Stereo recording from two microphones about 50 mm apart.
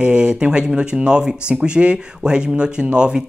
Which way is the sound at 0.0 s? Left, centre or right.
Right.